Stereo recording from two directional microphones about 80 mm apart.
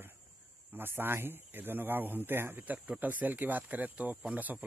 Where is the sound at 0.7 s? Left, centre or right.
Right.